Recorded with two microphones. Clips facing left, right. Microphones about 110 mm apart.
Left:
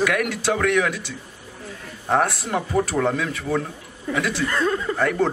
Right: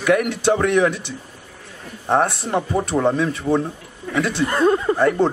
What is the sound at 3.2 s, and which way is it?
Speech, 25° right (ahead or behind).